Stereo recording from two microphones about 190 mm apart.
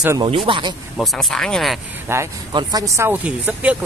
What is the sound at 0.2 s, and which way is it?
Speech, 25° right (ahead or behind).